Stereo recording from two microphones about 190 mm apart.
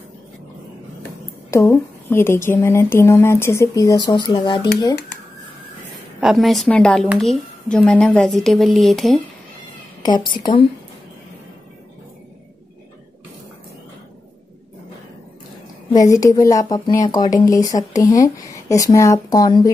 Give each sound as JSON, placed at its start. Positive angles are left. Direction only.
{"t": 1.5, "sound": "speech", "side_deg": 15}
{"t": 6.2, "sound": "a woman's voice", "side_deg": 0}
{"t": 10.0, "sound": "speech", "side_deg": 25}
{"t": 15.9, "sound": "speech", "side_deg": 20}